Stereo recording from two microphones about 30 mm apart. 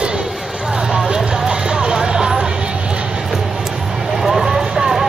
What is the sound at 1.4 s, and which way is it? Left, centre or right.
Music, right.